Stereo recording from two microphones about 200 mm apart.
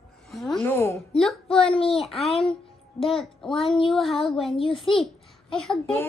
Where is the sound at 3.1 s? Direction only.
Centre (ahead or behind).